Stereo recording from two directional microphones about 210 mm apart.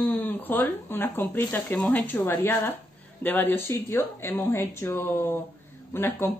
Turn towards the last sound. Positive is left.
turn(degrees=10)  # may be behind; listen again after turning